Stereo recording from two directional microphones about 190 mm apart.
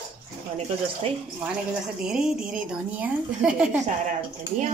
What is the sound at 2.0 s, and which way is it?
A woman's voice, 5° right (ahead or behind).